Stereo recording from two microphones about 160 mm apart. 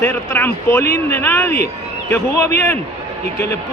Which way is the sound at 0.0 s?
15° left (ahead or behind).